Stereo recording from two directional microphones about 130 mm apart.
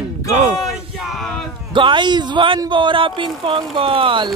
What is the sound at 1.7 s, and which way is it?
Speech, 40° right (ahead or behind).